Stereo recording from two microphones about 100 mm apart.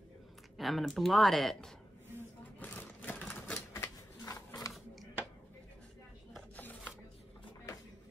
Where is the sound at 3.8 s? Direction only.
35° left (ahead or behind).